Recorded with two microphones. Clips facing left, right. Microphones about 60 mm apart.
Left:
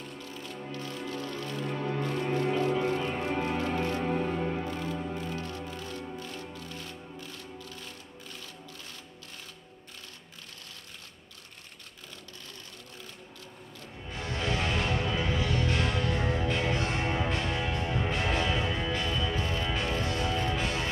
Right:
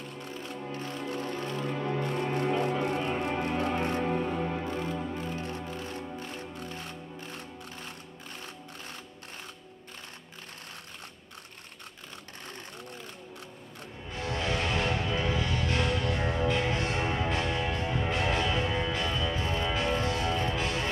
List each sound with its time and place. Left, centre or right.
0.2 s music: right
1.6 s music: centre
3.1 s music: centre
3.5 s music: right
4.0 s music: centre
4.6 s music: right
14.1 s music: centre